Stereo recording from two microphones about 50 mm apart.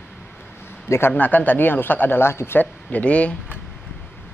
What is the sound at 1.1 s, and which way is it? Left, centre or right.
Speech, left.